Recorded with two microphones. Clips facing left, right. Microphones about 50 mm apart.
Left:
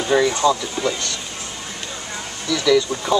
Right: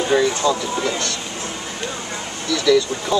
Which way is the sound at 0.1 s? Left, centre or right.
Centre.